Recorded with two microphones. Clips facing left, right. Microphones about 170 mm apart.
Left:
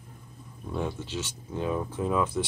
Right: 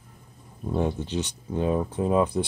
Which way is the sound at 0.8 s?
20° right (ahead or behind).